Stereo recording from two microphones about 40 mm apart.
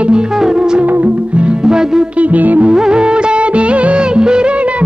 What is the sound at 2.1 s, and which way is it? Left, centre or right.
Music, right.